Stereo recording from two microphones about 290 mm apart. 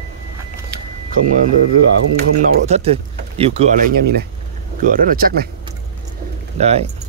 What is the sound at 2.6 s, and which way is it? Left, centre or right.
Speech, right.